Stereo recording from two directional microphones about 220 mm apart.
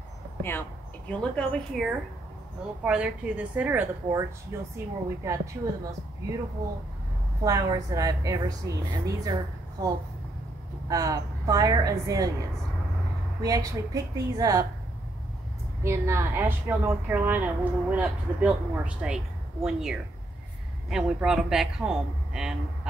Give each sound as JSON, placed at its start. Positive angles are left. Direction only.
{"t": 0.4, "sound": "a woman's voice", "side_deg": 10}
{"t": 7.4, "sound": "a woman's voice", "side_deg": -15}
{"t": 13.4, "sound": "a woman's voice", "side_deg": -15}
{"t": 15.8, "sound": "a woman's voice", "side_deg": -10}